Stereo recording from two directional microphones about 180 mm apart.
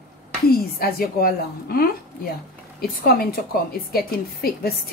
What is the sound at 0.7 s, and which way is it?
A woman's voice, 55° left (ahead or behind).